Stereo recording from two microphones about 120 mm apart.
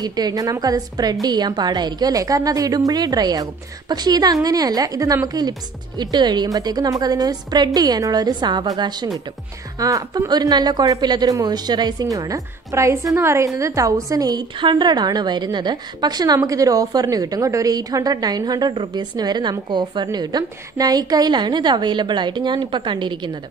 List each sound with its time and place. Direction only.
0.0 s a woman's voice: 35° right (ahead or behind)